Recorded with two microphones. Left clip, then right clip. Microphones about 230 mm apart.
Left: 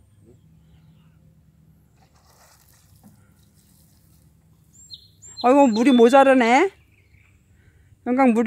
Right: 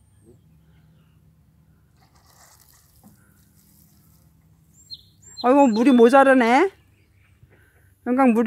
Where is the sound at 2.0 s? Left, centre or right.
Centre.